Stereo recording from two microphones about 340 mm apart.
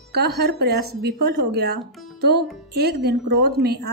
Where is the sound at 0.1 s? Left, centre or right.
Right.